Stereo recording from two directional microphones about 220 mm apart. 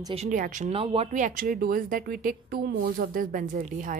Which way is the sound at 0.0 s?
30° right (ahead or behind).